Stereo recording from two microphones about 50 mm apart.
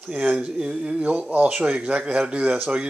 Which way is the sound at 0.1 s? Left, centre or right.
Right.